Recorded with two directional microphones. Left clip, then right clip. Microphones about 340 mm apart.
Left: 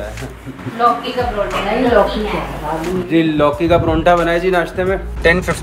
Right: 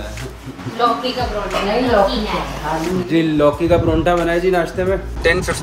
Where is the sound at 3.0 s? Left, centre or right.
Centre.